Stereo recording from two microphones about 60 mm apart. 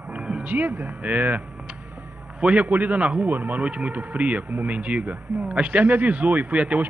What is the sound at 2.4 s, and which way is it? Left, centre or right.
Speech, right.